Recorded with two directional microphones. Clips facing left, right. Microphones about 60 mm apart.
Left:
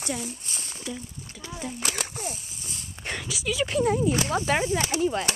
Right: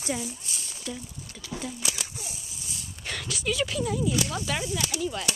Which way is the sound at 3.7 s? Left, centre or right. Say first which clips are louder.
Left 5 dB; left.